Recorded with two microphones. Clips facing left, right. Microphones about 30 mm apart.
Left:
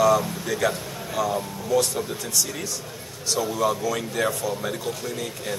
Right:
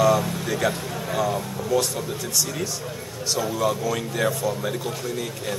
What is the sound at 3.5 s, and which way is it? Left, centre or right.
Speech, centre.